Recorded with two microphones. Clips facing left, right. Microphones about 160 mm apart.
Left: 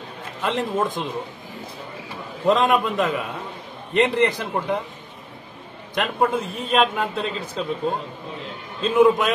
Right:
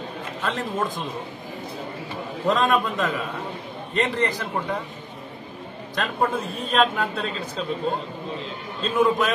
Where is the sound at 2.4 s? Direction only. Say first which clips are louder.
Left 3 dB; 15° left (ahead or behind).